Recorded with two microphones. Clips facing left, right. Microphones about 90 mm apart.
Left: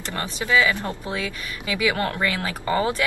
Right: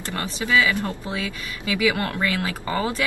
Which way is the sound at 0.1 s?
20° left (ahead or behind).